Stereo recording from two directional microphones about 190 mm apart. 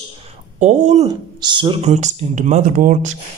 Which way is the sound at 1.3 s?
25° right (ahead or behind).